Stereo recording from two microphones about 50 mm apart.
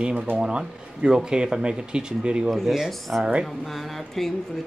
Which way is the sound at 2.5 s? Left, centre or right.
Centre.